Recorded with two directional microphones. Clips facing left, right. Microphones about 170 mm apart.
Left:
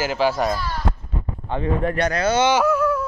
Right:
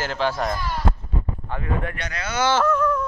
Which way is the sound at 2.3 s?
20° left (ahead or behind).